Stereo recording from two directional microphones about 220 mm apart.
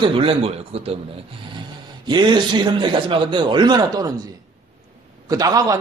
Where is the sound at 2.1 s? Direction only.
20° right (ahead or behind).